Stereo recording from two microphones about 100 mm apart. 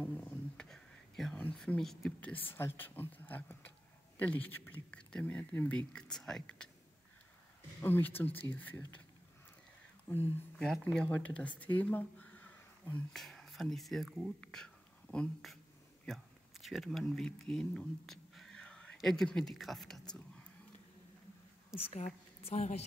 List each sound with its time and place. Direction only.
0.0 s a sound: 10° left (ahead or behind)
1.8 s a woman's voice: 5° left (ahead or behind)
2.1 s speech: 15° left (ahead or behind)
7.8 s speech: 20° left (ahead or behind)
10.6 s speech: 10° left (ahead or behind)
13.1 s speech: 5° left (ahead or behind)
14.4 s whispering: 5° left (ahead or behind)
16.1 s speech: centre (ahead or behind)
20.2 s whispering: 10° left (ahead or behind)
21.7 s a woman's voice: 90° left